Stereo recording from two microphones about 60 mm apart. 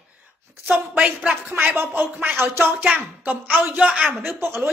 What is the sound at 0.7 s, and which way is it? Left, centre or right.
Speech, centre.